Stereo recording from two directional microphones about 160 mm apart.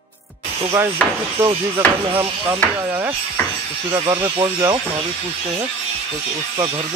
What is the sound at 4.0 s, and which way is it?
Speech, 30° right (ahead or behind).